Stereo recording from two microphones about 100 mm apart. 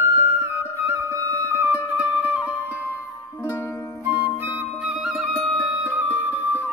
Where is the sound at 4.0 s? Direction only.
15° right (ahead or behind).